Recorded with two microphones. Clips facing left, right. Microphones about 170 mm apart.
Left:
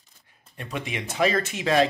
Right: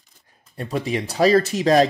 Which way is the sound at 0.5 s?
35° right (ahead or behind).